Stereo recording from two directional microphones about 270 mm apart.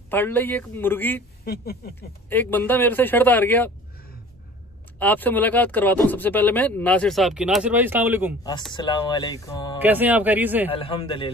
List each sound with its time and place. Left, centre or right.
0.1 s speech: centre
1.4 s speech: left
2.2 s speech: centre
4.9 s speech: centre
8.7 s speech: centre
9.8 s speech: centre
10.7 s a man's voice: left